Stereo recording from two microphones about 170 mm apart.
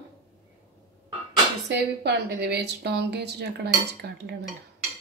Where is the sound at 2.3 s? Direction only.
75° right (ahead or behind).